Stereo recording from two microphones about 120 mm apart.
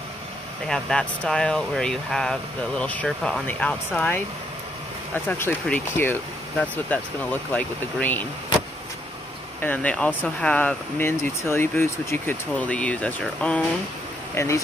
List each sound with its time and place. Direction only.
0.7 s speech: 5° left (ahead or behind)
7.5 s speech: 15° left (ahead or behind)
9.6 s speech: 15° left (ahead or behind)
14.3 s speech: 20° left (ahead or behind)